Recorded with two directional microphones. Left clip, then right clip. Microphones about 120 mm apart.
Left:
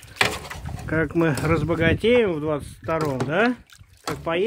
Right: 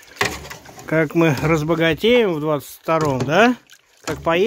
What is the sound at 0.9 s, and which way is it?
Speech, 50° right (ahead or behind).